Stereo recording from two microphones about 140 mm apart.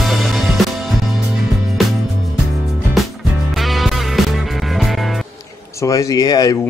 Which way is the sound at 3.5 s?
Centre (ahead or behind).